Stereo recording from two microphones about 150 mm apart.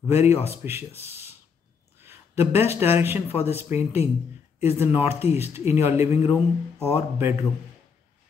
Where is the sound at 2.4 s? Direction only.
45° left (ahead or behind).